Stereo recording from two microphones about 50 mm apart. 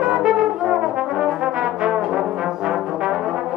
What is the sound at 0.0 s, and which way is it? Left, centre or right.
Brass instrument, centre.